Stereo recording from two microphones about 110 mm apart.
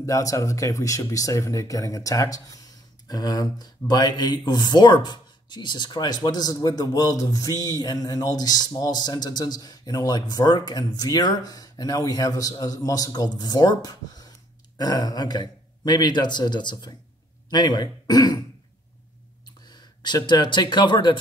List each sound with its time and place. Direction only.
0.0 s speech: 30° left (ahead or behind)
19.7 s speech: 40° left (ahead or behind)